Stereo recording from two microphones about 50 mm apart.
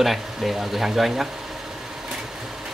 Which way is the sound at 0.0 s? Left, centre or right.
Centre.